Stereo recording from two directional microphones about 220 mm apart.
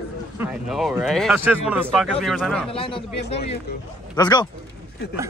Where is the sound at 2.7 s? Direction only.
25° left (ahead or behind).